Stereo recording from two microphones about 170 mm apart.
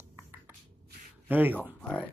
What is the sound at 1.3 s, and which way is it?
Speech, 10° right (ahead or behind).